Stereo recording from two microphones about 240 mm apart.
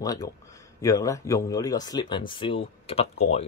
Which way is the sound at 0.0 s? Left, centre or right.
Centre.